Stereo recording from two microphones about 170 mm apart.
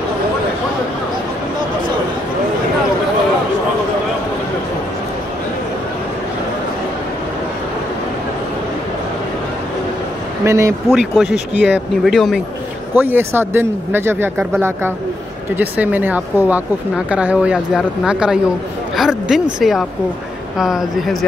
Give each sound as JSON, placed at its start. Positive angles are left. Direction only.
{"t": 10.4, "sound": "speech", "side_deg": -15}
{"t": 10.9, "sound": "speech", "side_deg": -5}
{"t": 11.5, "sound": "speech", "side_deg": 90}
{"t": 12.0, "sound": "speech", "side_deg": 0}
{"t": 12.9, "sound": "a man's voice", "side_deg": -10}
{"t": 15.5, "sound": "a man's voice", "side_deg": -10}
{"t": 18.9, "sound": "a sound", "side_deg": 0}
{"t": 19.6, "sound": "speech", "side_deg": 0}